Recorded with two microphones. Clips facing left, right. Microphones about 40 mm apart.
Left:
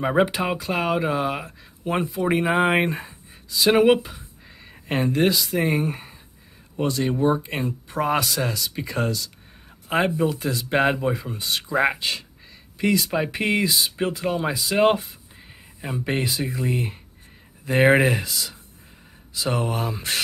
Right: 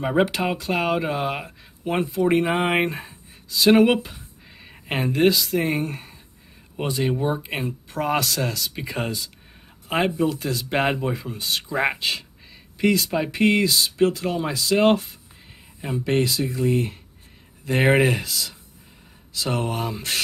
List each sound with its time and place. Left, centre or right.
0.0 s speech: centre
6.8 s speech: centre
16.1 s speech: centre
17.6 s speech: centre